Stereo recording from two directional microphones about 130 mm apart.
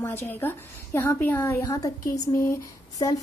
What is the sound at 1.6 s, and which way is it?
Speech, 25° left (ahead or behind).